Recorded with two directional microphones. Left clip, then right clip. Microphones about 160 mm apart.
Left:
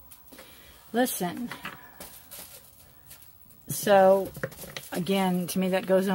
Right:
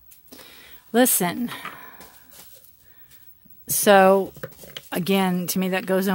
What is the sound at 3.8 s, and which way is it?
Speech, 90° right.